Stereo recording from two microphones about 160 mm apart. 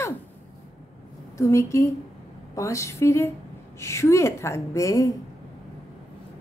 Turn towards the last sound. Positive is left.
turn(degrees=20)  # may be behind; listen again after turning